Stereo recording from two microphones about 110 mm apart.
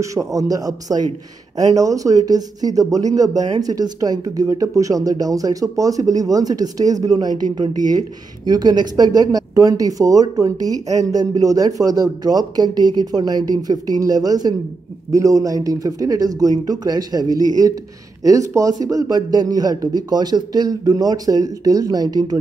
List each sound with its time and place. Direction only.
0.0 s speech: 30° right (ahead or behind)